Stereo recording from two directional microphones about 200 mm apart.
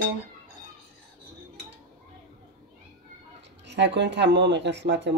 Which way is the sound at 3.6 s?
60° right (ahead or behind).